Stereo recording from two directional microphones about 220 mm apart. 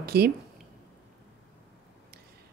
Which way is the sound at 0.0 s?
45° right (ahead or behind).